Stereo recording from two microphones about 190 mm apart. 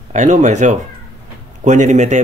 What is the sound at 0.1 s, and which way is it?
Speech, 40° right (ahead or behind).